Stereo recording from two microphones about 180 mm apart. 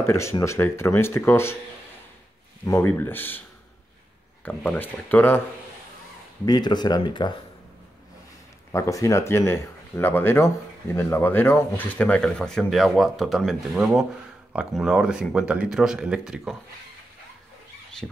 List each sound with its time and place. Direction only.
0.0 s speech: 15° left (ahead or behind)
2.6 s speech: 15° left (ahead or behind)
4.5 s speech: 10° left (ahead or behind)
6.4 s speech: 25° left (ahead or behind)
8.7 s speech: 15° left (ahead or behind); by 16.5 s 5° right (ahead or behind)